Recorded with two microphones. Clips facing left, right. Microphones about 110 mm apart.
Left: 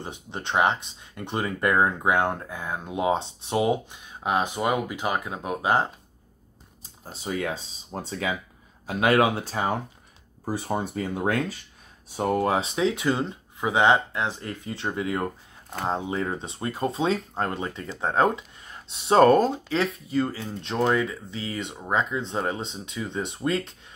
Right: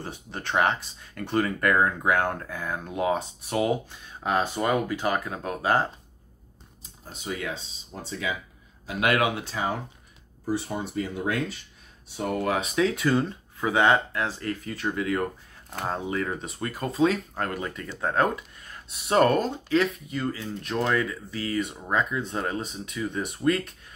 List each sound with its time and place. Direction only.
0.0 s speech: 20° left (ahead or behind)
6.8 s speech: 35° left (ahead or behind)
12.2 s speech: 30° left (ahead or behind)